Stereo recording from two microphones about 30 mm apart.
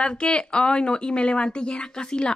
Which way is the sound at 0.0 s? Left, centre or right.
Left.